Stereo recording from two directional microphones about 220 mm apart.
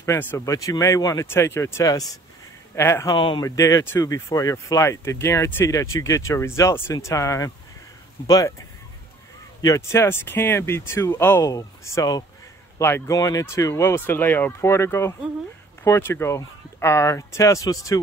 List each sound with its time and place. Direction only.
0.0 s speech: 10° left (ahead or behind)
9.6 s speech: 15° left (ahead or behind)